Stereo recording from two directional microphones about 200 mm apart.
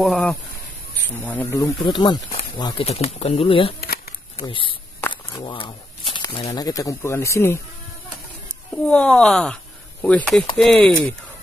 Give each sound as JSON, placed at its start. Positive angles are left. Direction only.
{"t": 0.0, "sound": "speech", "side_deg": 0}
{"t": 3.8, "sound": "a sound", "side_deg": 50}
{"t": 4.4, "sound": "speech", "side_deg": 25}